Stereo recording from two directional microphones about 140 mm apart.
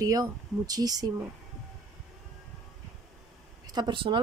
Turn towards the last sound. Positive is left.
turn(degrees=-35)  # may be behind; listen again after turning